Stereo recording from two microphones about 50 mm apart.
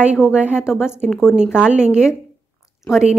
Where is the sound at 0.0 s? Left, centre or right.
Centre.